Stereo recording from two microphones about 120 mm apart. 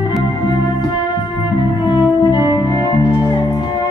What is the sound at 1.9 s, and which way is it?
Music, 40° left (ahead or behind).